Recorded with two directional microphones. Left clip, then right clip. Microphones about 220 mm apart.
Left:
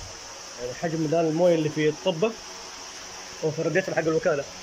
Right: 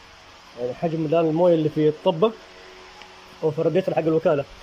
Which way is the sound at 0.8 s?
10° right (ahead or behind).